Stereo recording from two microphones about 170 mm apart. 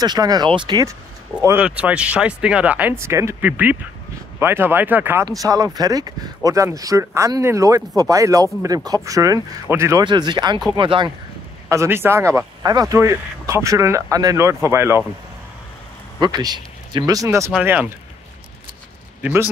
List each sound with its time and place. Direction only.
0.0 s speech: 25° right (ahead or behind)
1.4 s a man's voice: 10° right (ahead or behind); by 11.1 s 30° right (ahead or behind)
11.7 s a man's voice: 15° right (ahead or behind)
16.2 s speech: 25° right (ahead or behind)
17.5 s speech: 5° right (ahead or behind)